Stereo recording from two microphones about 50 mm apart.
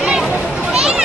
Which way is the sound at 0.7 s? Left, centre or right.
Centre.